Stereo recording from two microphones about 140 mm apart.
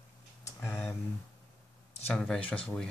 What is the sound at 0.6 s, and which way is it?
Speech, 15° left (ahead or behind).